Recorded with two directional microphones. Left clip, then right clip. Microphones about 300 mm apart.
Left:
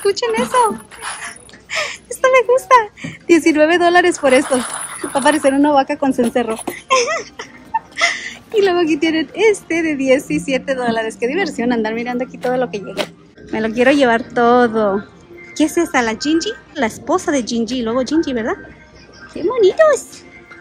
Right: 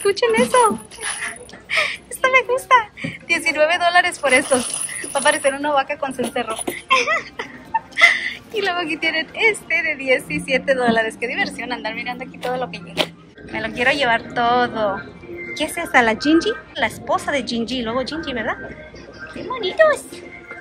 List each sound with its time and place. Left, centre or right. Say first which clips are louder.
0.0 s speech: even; centre
7.9 s a sound: right 5 dB; centre
8.6 s a woman's voice: left 4 dB; centre
12.9 s music: right 1 dB; centre
13.6 s a woman's voice: left 5 dB; centre
16.7 s speech: left 5 dB; left